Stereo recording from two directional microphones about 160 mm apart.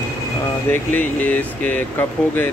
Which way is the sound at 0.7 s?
10° left (ahead or behind).